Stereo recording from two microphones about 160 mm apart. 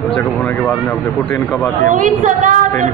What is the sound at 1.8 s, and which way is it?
Speech, 55° right (ahead or behind).